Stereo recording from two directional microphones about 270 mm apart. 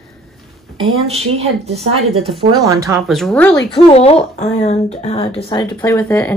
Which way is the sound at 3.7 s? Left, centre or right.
Left.